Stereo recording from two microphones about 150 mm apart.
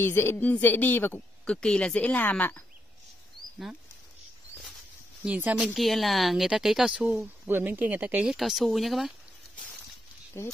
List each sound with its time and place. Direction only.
0.0 s speech: 15° left (ahead or behind)
5.2 s speech: 10° right (ahead or behind)
10.4 s speech: 15° left (ahead or behind)